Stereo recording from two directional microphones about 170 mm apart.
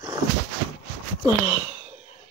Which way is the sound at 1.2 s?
20° right (ahead or behind).